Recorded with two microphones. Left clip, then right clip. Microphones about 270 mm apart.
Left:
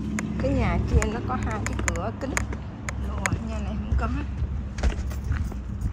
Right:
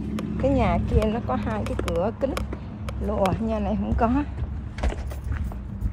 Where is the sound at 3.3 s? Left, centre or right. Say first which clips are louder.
Right 8 dB; centre.